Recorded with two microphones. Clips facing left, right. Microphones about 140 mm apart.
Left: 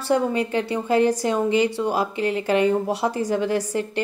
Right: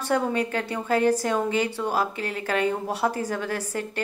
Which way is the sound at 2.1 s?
40° right (ahead or behind).